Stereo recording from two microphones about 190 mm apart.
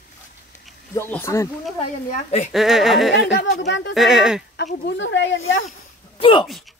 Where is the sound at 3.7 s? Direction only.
65° left (ahead or behind).